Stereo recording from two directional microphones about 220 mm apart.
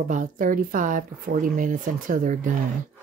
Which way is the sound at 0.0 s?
35° right (ahead or behind).